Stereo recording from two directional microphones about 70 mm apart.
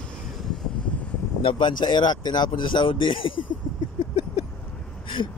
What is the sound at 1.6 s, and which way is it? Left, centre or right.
Speech, left.